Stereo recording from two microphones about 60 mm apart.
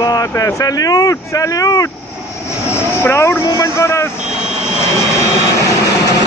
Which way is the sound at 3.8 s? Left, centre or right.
Left.